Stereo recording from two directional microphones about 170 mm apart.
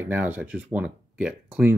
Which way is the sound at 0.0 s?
10° right (ahead or behind).